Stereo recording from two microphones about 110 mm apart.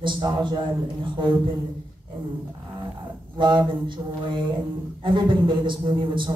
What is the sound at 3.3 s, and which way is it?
Speech, 45° right (ahead or behind).